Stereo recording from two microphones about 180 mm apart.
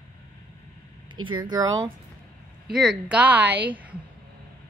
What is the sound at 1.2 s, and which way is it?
Speech, 25° right (ahead or behind).